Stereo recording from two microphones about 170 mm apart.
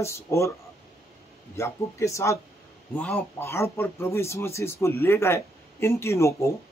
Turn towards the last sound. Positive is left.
turn(degrees=15)  # may be behind; listen again after turning